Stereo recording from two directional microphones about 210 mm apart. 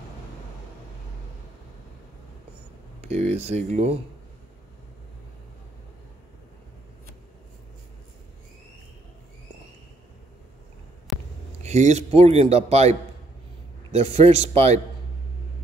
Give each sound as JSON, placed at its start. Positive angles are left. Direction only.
{"t": 3.2, "sound": "a man's voice", "side_deg": -30}
{"t": 11.6, "sound": "a man's voice", "side_deg": -35}
{"t": 13.9, "sound": "a man's voice", "side_deg": -30}